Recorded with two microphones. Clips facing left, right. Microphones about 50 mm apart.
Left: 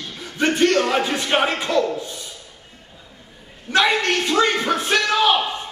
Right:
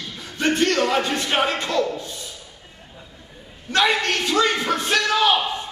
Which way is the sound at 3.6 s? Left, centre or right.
Centre.